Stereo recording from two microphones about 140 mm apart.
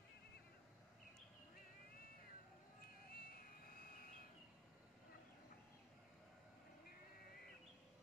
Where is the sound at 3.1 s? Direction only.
90° left.